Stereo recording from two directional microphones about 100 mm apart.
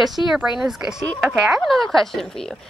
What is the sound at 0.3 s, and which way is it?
Speech, 5° right (ahead or behind).